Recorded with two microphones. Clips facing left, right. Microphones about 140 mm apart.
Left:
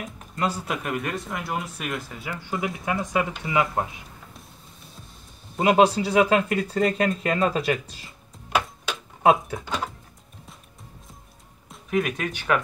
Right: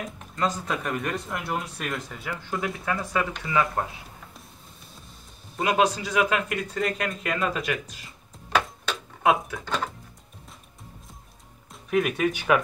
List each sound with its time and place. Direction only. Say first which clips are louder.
0.4 s speech: even; 10° left (ahead or behind)
2.6 s speech: left 3 dB; 20° left (ahead or behind)
5.6 s speech: left 5 dB; 30° left (ahead or behind)
9.2 s speech: left 3 dB; 25° left (ahead or behind)
11.7 s speech: right 1 dB; centre (ahead or behind)